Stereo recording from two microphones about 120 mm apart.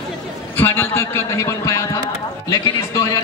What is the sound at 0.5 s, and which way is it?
A man's voice, 20° left (ahead or behind).